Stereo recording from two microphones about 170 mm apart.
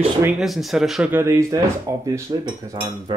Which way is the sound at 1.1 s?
15° right (ahead or behind).